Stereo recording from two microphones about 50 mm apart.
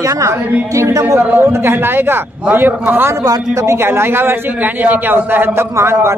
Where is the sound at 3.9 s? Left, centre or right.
Right.